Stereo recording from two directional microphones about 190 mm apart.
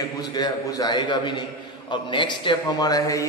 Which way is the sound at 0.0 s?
20° left (ahead or behind).